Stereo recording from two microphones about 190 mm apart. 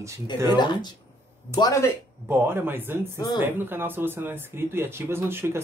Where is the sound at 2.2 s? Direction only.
10° right (ahead or behind).